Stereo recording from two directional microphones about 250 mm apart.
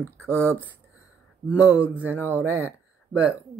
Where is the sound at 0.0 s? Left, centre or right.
Centre.